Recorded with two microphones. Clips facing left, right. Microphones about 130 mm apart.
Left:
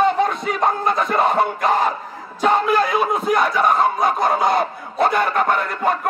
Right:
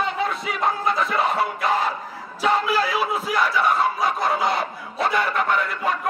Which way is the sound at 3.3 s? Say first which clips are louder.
Left 4 dB; 50° left (ahead or behind).